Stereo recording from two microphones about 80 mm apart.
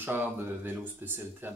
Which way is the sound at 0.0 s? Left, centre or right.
Right.